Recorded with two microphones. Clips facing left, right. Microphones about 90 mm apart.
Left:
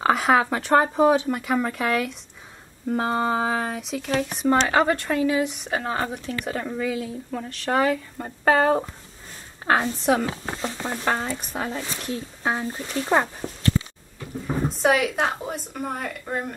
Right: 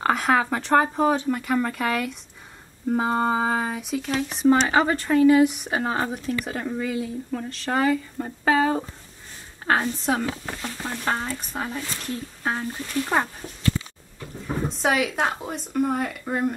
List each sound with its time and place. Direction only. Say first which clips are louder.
0.0 s speech: left 2 dB; centre (ahead or behind)
10.4 s speech: left 3 dB; 25° left (ahead or behind)
12.0 s speech: left 1 dB; 10° left (ahead or behind)
13.4 s a sound: left 6 dB; 70° left (ahead or behind)
14.7 s speech: left 2 dB; centre (ahead or behind)